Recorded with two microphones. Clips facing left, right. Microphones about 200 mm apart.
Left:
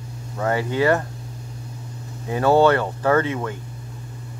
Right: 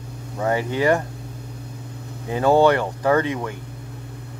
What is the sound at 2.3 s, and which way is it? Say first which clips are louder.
A man's voice: even; 15° right (ahead or behind).